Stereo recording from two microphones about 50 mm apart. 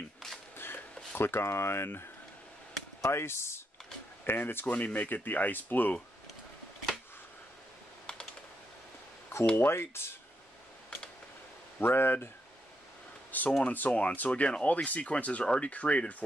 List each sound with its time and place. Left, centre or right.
0.6 s a sound: left
3.0 s speech: left
4.3 s speech: left
4.7 s speech: left
8.1 s computer keyboard: left
9.6 s speech: left
11.8 s speech: left
13.3 s a sound: left
13.7 s speech: left